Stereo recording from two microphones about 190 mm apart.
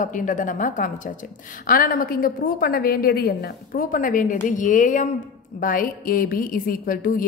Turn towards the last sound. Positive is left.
turn(degrees=45)  # may be behind; listen again after turning